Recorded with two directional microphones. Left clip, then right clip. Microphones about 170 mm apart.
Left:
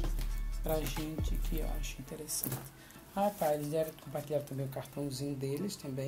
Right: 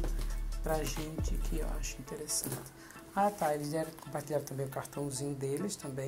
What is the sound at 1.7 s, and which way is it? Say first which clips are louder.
Speech: right 2 dB; 20° left (ahead or behind).